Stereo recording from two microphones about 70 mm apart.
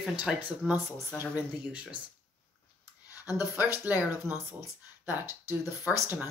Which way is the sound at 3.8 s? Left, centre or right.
Right.